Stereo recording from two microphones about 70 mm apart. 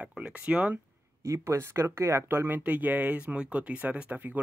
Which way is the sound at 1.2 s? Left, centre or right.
Right.